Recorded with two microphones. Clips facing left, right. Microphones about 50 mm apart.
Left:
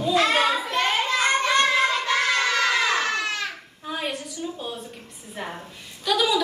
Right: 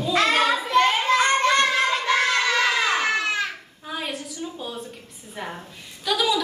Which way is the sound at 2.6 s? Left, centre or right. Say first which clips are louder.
Right 1 dB; right.